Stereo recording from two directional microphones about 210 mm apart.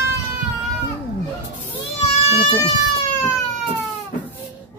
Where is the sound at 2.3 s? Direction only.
30° left (ahead or behind).